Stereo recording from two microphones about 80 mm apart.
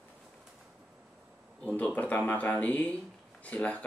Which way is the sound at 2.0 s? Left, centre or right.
Centre.